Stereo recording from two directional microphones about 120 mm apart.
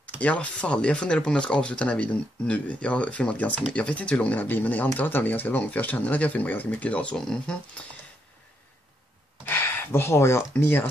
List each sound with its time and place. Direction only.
0.2 s speech: 10° left (ahead or behind)
9.5 s speech: 20° left (ahead or behind)